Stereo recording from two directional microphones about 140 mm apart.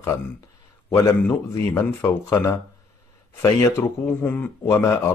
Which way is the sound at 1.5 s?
20° left (ahead or behind).